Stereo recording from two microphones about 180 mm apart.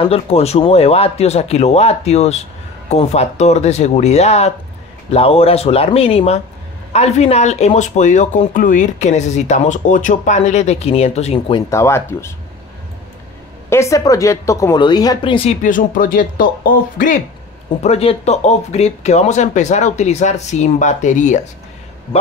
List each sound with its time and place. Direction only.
0.0 s speech: 35° left (ahead or behind)
11.7 s speech: 15° left (ahead or behind)
13.7 s a woman's voice: 15° left (ahead or behind)
15.6 s speech: 45° left (ahead or behind)
17.8 s speech: 35° left (ahead or behind)